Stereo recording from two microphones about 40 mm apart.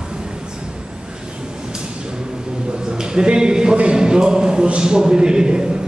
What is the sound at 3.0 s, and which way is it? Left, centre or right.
A man's voice, centre.